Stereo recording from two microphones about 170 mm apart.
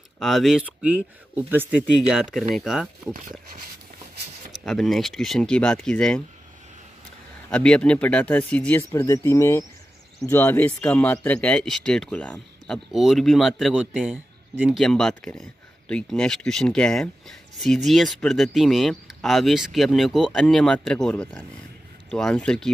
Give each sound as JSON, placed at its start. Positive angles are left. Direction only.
{"t": 0.2, "sound": "speech", "side_deg": 0}
{"t": 4.5, "sound": "speech", "side_deg": 0}
{"t": 7.5, "sound": "speech", "side_deg": 5}